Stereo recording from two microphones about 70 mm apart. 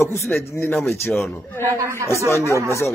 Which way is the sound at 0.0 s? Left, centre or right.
Left.